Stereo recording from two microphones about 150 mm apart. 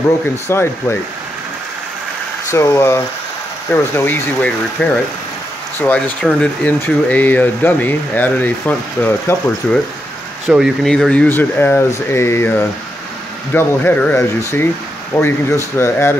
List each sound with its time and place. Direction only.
0.5 s speech: 20° left (ahead or behind)
2.5 s speech: 20° left (ahead or behind)